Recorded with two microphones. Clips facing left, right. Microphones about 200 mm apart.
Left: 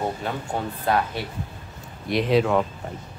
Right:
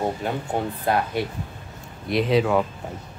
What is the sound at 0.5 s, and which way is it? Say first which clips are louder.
Speech: right 3 dB; 15° right (ahead or behind).